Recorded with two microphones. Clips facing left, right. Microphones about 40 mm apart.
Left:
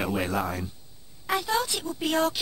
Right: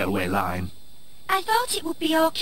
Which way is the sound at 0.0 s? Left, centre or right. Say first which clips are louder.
Right 3 dB; centre.